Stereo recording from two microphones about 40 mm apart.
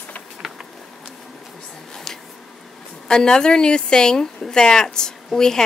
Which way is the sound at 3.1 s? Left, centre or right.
Centre.